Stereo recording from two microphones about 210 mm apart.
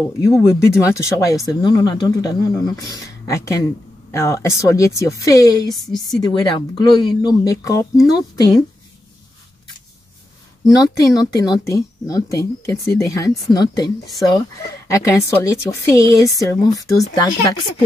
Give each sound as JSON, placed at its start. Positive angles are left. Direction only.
{"t": 0.2, "sound": "speech", "side_deg": 15}
{"t": 10.8, "sound": "speech", "side_deg": 15}
{"t": 14.9, "sound": "speech", "side_deg": 15}